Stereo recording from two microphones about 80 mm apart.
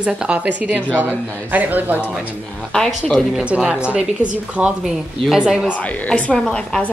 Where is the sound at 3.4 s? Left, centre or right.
Centre.